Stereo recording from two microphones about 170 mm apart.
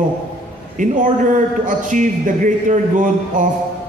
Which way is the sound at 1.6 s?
50° right (ahead or behind).